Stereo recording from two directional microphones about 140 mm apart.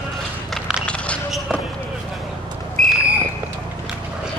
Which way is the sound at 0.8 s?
10° left (ahead or behind).